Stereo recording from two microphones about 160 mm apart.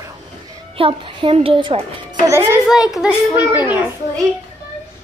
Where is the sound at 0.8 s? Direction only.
30° right (ahead or behind).